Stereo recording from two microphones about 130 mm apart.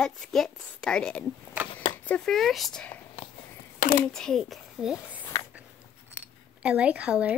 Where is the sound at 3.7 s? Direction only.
90° left.